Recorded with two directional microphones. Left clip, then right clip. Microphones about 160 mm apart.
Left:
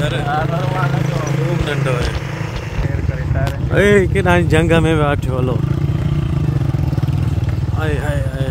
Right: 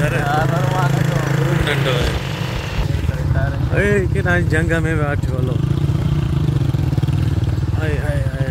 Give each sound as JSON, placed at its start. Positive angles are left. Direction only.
{"t": 3.7, "sound": "speech", "side_deg": 30}